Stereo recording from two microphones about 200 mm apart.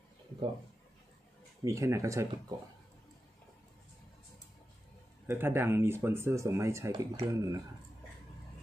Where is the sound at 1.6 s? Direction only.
15° right (ahead or behind).